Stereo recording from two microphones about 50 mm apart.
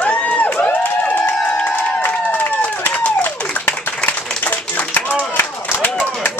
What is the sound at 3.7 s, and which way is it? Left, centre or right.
Clapping, left.